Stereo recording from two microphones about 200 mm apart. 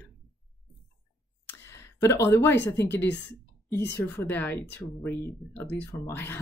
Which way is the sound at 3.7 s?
60° left (ahead or behind).